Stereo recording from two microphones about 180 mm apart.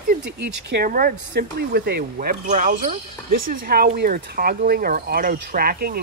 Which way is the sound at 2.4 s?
40° right (ahead or behind).